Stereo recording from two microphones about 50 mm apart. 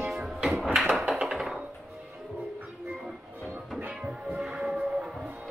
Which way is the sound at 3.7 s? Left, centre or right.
Right.